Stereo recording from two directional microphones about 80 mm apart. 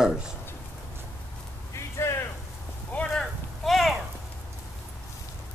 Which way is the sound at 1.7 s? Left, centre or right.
Left.